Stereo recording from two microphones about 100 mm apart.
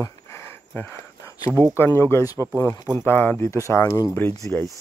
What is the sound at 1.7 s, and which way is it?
Speech, 25° left (ahead or behind).